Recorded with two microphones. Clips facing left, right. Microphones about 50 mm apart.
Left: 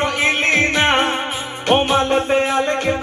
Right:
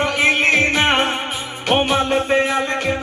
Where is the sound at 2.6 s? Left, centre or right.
Right.